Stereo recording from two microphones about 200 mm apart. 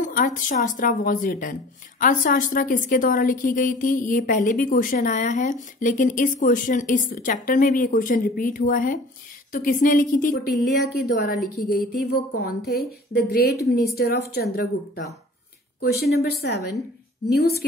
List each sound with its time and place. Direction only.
0.0 s speech: 40° left (ahead or behind)